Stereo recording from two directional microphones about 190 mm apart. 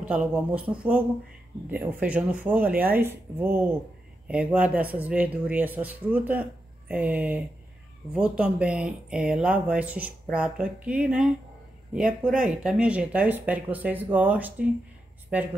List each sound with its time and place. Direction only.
0.1 s speech: 5° right (ahead or behind)
12.4 s speech: 5° right (ahead or behind)